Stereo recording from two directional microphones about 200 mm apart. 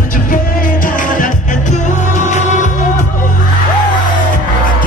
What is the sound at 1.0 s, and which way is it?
Music, 40° left (ahead or behind).